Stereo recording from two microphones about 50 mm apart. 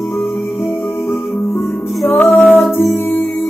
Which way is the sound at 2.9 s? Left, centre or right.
Left.